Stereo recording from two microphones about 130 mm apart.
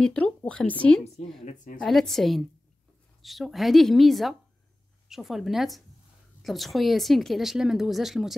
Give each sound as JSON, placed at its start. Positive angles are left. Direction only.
{"t": 0.0, "sound": "speech", "side_deg": 10}
{"t": 1.4, "sound": "a woman's voice", "side_deg": 75}
{"t": 1.8, "sound": "speech", "side_deg": 0}